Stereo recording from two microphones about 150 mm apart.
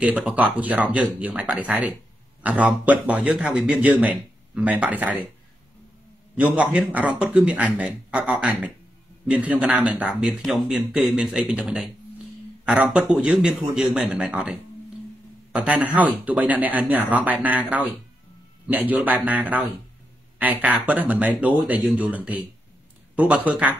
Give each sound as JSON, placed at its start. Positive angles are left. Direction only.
{"t": 0.0, "sound": "a man's voice", "side_deg": -10}
{"t": 6.3, "sound": "a man's voice", "side_deg": -10}